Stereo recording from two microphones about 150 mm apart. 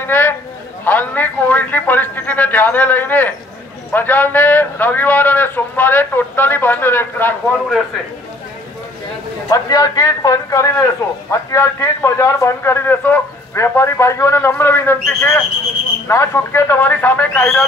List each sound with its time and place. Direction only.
0.0 s a man's voice: 15° left (ahead or behind)
9.5 s a man's voice: 25° left (ahead or behind)